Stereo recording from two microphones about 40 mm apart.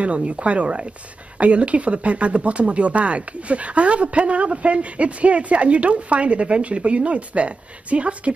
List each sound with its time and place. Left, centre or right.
0.0 s speech: right